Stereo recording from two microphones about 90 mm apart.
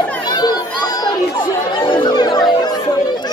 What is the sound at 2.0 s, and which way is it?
Chatter, 50° left (ahead or behind).